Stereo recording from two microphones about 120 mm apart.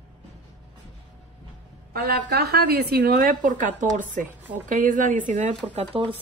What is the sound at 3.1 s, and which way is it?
Speech, 90° right.